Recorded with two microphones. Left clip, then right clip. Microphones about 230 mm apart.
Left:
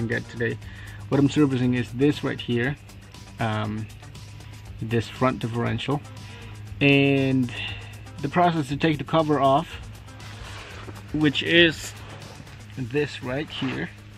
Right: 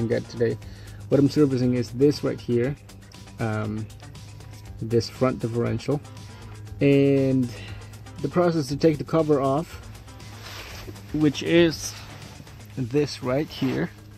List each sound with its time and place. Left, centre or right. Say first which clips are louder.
0.0 s speech: right 3 dB; centre
4.8 s speech: right 1 dB; centre
11.3 s speech: left 3 dB; centre
12.9 s speech: right 3 dB; right